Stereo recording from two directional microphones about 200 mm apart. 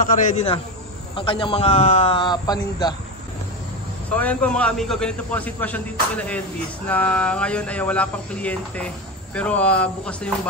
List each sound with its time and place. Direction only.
0.0 s a man's voice: 40° left (ahead or behind)
1.1 s a man's voice: 25° left (ahead or behind)
4.2 s speech: 5° left (ahead or behind)